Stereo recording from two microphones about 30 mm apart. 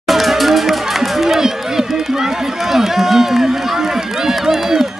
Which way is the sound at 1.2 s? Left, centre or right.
Centre.